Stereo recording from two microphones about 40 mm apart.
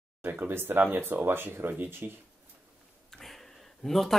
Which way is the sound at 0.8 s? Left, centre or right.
Right.